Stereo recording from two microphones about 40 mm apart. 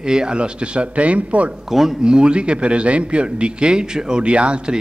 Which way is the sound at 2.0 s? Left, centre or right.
Right.